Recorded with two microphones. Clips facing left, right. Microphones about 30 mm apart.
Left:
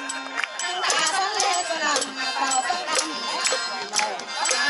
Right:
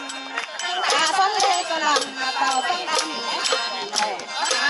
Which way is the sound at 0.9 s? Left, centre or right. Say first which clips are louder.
Right 6 dB; centre.